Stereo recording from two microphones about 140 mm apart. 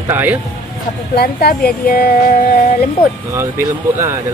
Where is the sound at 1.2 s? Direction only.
90° left.